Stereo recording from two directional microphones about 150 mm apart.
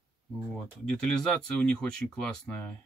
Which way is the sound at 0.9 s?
5° left (ahead or behind).